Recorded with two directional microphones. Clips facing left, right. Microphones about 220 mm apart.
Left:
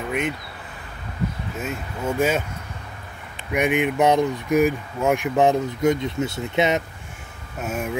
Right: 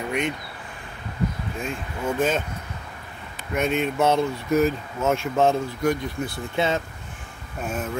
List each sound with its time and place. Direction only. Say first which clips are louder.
1.6 s speech: left 1 dB; 5° left (ahead or behind)
3.5 s speech: left 3 dB; 15° left (ahead or behind)